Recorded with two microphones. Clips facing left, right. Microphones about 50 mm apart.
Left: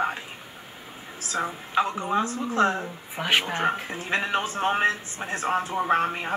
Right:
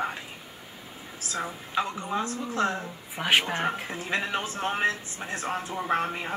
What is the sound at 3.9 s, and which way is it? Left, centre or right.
Speech, left.